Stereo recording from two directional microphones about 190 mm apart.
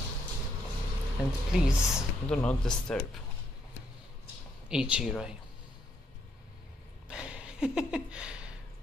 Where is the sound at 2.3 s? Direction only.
5° left (ahead or behind).